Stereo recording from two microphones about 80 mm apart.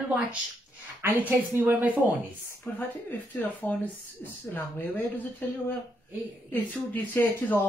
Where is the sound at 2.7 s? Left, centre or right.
Left.